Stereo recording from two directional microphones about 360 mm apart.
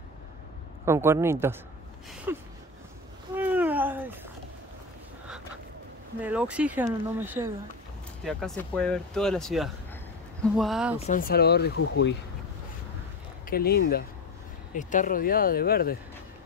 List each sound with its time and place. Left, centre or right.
0.8 s speech: centre
3.3 s cat: centre
6.2 s speech: centre
11.0 s speech: left
13.5 s speech: left